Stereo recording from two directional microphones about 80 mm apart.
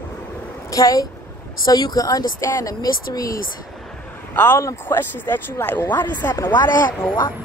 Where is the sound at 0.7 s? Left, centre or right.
Left.